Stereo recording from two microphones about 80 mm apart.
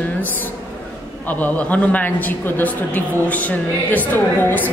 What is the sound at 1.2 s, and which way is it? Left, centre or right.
Speech, centre.